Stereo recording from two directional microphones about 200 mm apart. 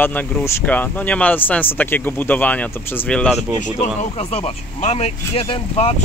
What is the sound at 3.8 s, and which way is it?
Speech, 35° left (ahead or behind).